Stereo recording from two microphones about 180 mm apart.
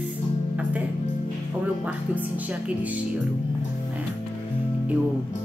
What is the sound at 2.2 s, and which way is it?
Speech, 10° right (ahead or behind).